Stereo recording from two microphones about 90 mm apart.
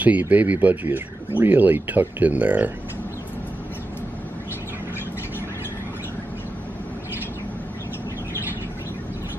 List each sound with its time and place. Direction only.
0.0 s speech: 15° right (ahead or behind)